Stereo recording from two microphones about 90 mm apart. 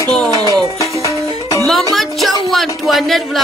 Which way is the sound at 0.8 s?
35° left (ahead or behind).